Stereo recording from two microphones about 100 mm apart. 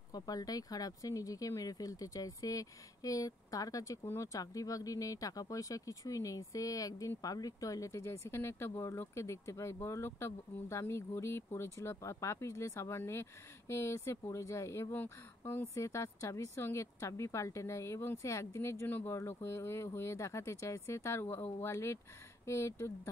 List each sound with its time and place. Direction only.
0.1 s speech: 40° left (ahead or behind)